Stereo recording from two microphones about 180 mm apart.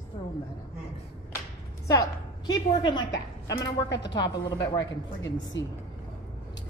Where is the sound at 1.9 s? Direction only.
20° left (ahead or behind).